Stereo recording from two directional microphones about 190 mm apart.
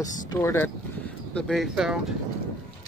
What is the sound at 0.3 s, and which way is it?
Speech, 15° left (ahead or behind).